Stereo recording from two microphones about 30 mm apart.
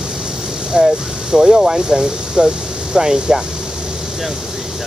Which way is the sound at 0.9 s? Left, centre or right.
Right.